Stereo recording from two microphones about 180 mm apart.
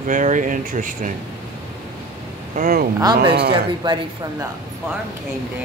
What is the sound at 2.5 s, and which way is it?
Speech, 55° right (ahead or behind).